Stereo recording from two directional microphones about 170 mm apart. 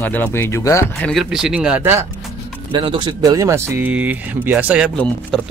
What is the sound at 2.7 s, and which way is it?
Speech, 30° right (ahead or behind).